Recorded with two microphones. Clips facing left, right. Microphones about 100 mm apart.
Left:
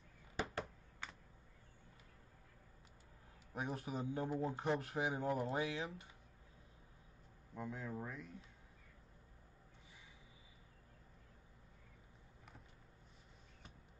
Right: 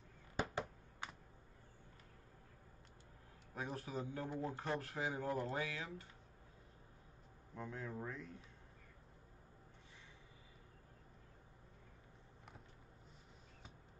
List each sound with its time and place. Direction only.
3.5 s speech: 20° left (ahead or behind)
7.5 s speech: 10° left (ahead or behind)